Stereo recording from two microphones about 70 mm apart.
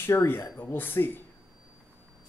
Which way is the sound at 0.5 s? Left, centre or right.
Left.